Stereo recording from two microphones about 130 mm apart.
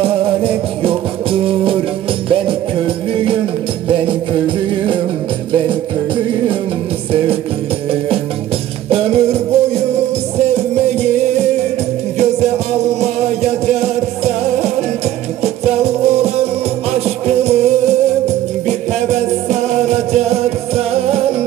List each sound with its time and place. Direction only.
0.0 s music: 45° right (ahead or behind)
8.8 s music: 50° right (ahead or behind)